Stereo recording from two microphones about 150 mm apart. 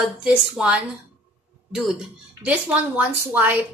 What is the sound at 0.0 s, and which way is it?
Speech, 5° right (ahead or behind).